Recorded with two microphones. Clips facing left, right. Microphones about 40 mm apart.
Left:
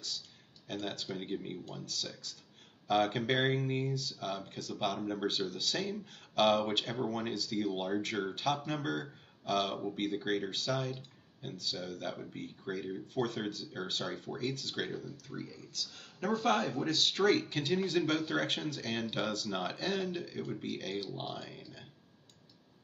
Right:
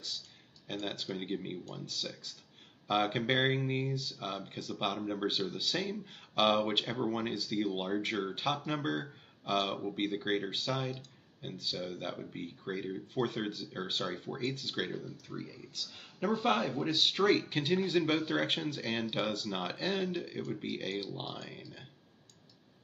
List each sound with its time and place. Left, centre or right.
0.8 s speech: centre
17.2 s speech: centre
17.5 s speech: centre